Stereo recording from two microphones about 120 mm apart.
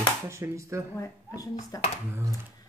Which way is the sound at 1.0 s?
30° left (ahead or behind).